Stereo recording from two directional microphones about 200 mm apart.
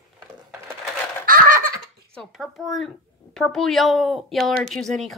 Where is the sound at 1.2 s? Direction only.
45° right (ahead or behind).